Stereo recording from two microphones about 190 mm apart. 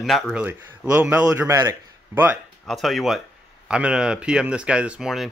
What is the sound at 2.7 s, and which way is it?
Speech, centre (ahead or behind).